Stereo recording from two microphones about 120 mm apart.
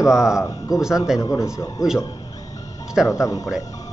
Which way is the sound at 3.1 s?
30° left (ahead or behind).